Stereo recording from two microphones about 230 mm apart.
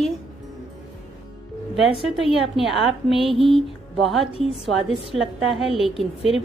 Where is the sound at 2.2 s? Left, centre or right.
Left.